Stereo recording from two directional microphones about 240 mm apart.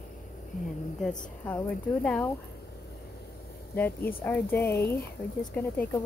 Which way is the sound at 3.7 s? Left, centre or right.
Centre.